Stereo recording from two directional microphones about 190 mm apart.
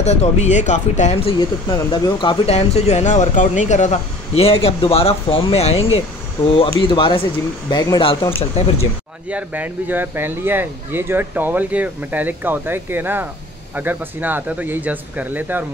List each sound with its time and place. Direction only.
0.0 s speech: 35° left (ahead or behind)
1.7 s speech: 20° left (ahead or behind)
9.3 s speech: 10° right (ahead or behind)